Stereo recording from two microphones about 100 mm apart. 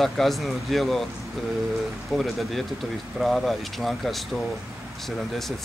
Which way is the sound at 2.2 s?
Centre (ahead or behind).